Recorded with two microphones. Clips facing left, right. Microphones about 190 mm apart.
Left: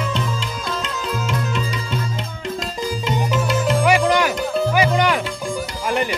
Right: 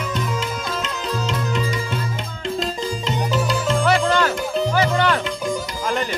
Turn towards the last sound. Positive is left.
turn(degrees=15)  # may be behind; listen again after turning